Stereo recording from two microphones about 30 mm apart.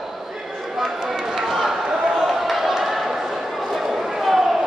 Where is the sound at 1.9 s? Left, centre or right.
Centre.